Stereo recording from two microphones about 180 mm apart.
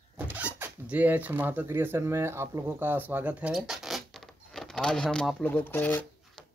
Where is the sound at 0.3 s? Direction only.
10° right (ahead or behind).